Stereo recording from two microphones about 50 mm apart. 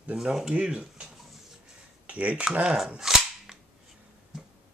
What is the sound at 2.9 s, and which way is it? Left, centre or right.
Cap gun, centre.